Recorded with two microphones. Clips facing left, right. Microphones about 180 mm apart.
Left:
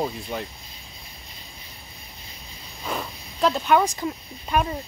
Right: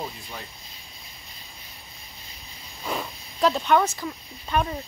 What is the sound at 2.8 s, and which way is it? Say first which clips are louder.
Snake: even; centre (ahead or behind).